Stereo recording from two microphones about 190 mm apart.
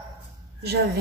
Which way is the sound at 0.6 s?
60° right (ahead or behind).